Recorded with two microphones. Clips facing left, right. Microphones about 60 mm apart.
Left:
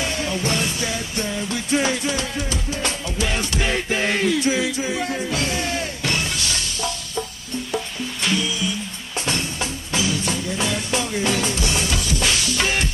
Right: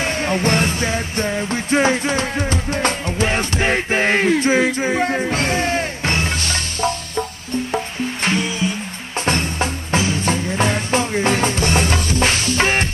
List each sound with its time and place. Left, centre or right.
0.0 s music: right